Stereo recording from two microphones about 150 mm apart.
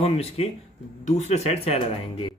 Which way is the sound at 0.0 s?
45° left (ahead or behind).